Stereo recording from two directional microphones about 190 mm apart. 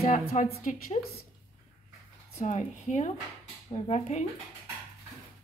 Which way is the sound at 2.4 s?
40° left (ahead or behind).